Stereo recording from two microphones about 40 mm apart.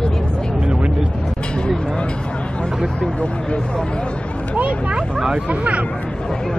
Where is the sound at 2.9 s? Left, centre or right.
Left.